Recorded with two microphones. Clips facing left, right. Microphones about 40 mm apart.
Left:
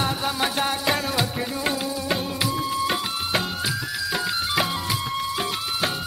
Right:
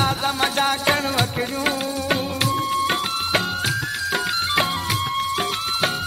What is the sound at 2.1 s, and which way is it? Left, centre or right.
Music, right.